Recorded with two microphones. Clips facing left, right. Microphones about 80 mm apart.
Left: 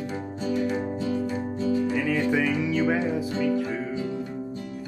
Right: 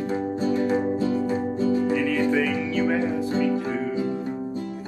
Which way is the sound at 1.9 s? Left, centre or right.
Centre.